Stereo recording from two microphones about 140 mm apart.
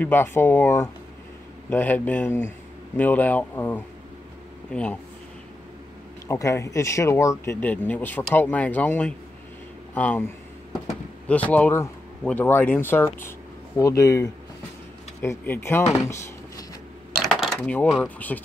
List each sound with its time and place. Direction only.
0.0 s speech: 15° left (ahead or behind)
6.2 s speech: 20° left (ahead or behind)
7.6 s speech: 10° left (ahead or behind)
17.2 s a sound: centre (ahead or behind)
18.0 s speech: 10° left (ahead or behind)